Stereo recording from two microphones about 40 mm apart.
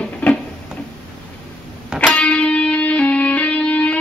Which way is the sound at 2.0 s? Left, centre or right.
Left.